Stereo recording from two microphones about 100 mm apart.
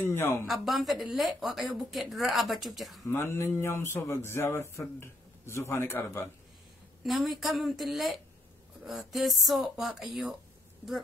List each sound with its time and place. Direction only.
0.0 s a man's voice: 25° left (ahead or behind)
0.5 s a woman's voice: centre (ahead or behind)
3.1 s a man's voice: 25° left (ahead or behind)
7.0 s a woman's voice: centre (ahead or behind)